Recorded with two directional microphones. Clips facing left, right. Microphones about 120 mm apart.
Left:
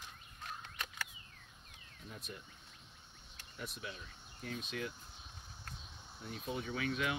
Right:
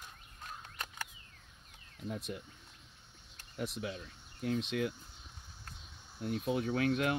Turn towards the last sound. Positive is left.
turn(degrees=-55)  # may be behind; listen again after turning